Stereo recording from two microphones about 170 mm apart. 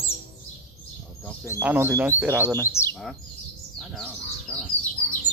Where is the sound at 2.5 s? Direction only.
15° left (ahead or behind).